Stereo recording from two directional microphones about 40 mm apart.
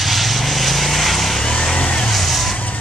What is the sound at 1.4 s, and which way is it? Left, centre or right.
Vehicle, left.